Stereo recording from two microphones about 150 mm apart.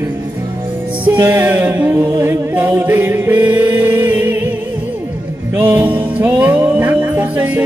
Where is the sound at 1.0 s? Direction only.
10° right (ahead or behind).